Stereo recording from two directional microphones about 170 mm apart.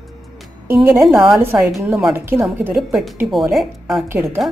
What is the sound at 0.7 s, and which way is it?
Speech, 15° right (ahead or behind).